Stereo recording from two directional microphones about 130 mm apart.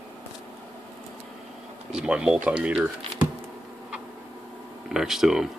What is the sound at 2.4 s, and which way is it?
Speech, 10° right (ahead or behind).